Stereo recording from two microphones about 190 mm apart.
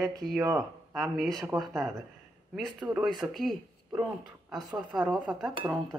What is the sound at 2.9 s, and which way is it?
Speech, 5° right (ahead or behind).